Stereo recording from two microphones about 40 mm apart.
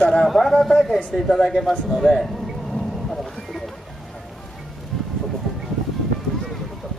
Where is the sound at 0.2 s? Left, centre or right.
Centre.